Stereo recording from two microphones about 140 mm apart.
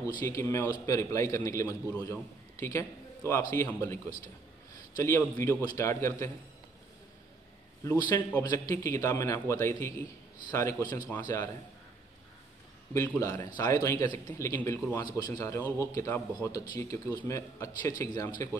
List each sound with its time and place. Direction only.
0.2 s a man's voice: 20° left (ahead or behind)
7.8 s a man's voice: 25° left (ahead or behind)
12.9 s a man's voice: 15° left (ahead or behind)